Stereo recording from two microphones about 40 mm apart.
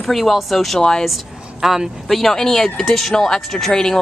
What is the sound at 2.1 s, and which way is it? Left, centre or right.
Speech, centre.